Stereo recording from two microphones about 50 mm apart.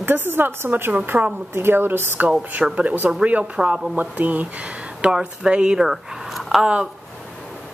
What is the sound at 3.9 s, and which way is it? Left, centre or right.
Speech, right.